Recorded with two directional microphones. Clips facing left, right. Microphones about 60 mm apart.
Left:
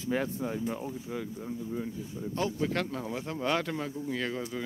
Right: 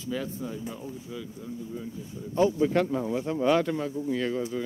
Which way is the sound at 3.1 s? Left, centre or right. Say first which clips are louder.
Right 6 dB; centre.